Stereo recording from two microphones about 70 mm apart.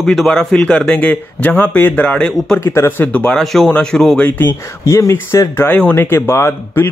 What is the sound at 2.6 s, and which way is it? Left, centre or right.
Speech, left.